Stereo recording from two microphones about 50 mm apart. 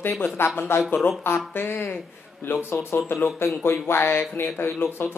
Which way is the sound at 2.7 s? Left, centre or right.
Left.